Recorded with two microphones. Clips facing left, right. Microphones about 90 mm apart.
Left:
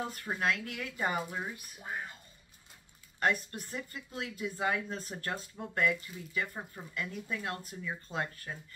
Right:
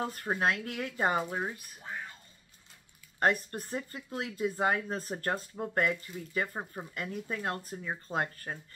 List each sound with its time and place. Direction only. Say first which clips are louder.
0.1 s speech: right 3 dB; 40° right (ahead or behind)
1.8 s speech: left 5 dB; 15° left (ahead or behind)
3.2 s speech: right 3 dB; 40° right (ahead or behind)